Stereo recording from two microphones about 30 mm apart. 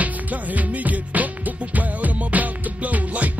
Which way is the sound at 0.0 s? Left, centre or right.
Right.